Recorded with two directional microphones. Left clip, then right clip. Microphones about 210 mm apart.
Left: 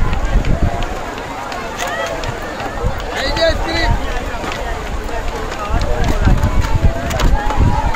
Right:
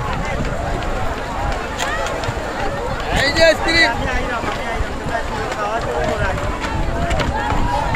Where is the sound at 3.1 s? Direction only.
40° right (ahead or behind).